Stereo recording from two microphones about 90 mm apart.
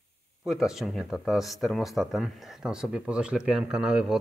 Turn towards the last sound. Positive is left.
turn(degrees=-10)  # may be behind; listen again after turning